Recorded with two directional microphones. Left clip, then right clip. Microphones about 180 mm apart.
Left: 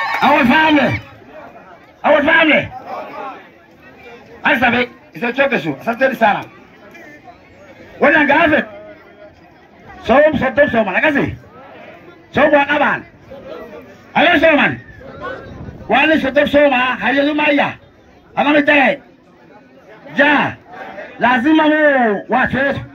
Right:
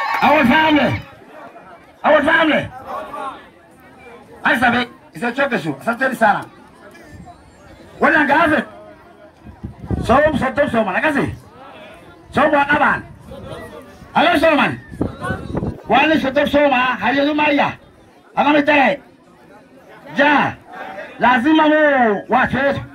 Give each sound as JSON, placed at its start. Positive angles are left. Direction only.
{"t": 0.2, "sound": "a man's voice", "side_deg": -35}
{"t": 2.0, "sound": "a man's voice", "side_deg": -5}
{"t": 4.4, "sound": "a man's voice", "side_deg": -10}
{"t": 8.0, "sound": "a man's voice", "side_deg": -10}
{"t": 10.0, "sound": "a man's voice", "side_deg": -10}
{"t": 14.1, "sound": "a man's voice", "side_deg": -10}
{"t": 15.9, "sound": "a man's voice", "side_deg": -10}
{"t": 20.2, "sound": "a man's voice", "side_deg": -10}